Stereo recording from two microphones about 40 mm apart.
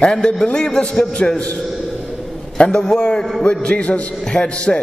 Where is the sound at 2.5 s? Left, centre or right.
Left.